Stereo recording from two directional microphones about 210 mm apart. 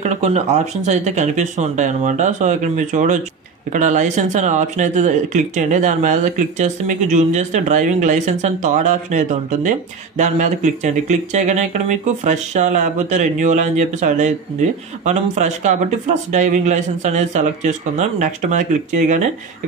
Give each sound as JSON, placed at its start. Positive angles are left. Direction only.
{"t": 0.0, "sound": "speech", "side_deg": -35}